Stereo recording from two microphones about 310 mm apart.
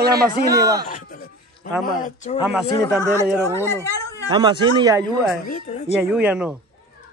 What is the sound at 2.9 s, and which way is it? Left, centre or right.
Speech, centre.